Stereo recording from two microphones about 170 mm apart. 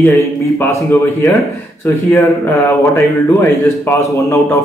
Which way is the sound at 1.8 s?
15° left (ahead or behind).